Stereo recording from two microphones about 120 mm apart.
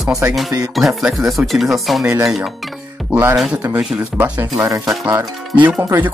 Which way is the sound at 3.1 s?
15° right (ahead or behind).